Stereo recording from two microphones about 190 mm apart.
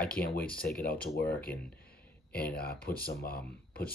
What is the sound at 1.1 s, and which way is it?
Speech, 55° left (ahead or behind).